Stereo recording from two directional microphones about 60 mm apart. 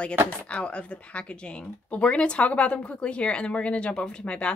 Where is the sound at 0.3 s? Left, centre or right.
Centre.